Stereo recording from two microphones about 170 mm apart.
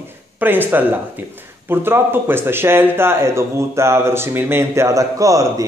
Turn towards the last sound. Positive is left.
turn(degrees=-20)  # may be behind; listen again after turning